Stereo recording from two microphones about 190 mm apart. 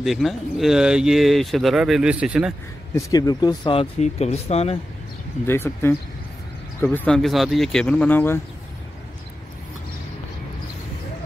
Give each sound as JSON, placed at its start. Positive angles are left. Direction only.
{"t": 0.0, "sound": "speech", "side_deg": 0}
{"t": 2.9, "sound": "speech", "side_deg": 20}
{"t": 5.5, "sound": "speech", "side_deg": 10}